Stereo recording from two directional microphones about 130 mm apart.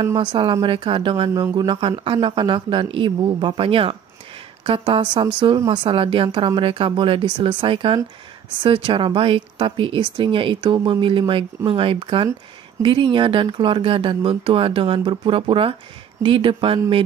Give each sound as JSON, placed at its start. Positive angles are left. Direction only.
{"t": 0.0, "sound": "speech", "side_deg": -35}